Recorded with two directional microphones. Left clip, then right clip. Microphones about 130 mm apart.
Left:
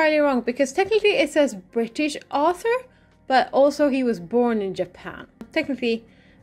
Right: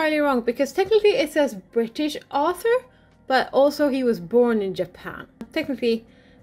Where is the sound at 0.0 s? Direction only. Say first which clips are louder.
Left 2 dB; 15° left (ahead or behind).